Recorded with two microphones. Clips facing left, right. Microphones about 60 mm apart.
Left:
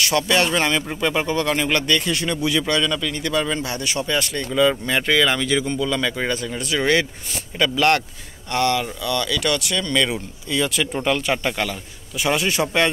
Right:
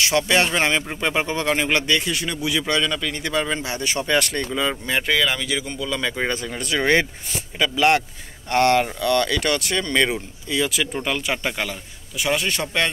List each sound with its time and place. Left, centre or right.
0.0 s speech: right
2.1 s speech: centre
3.8 s speech: right
4.5 s speech: centre
6.2 s speech: right
6.6 s speech: right
7.3 s speech: centre
8.5 s speech: right
10.5 s speech: centre
12.2 s speech: centre